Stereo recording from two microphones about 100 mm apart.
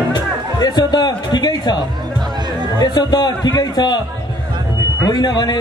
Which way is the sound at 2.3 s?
45° right (ahead or behind).